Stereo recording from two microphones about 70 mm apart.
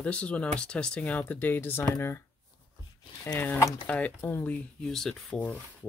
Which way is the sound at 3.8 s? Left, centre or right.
Left.